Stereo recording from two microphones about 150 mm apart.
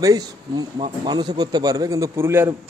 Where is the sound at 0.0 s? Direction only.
25° right (ahead or behind).